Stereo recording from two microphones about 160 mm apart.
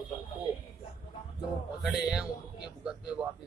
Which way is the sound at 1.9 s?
5° right (ahead or behind).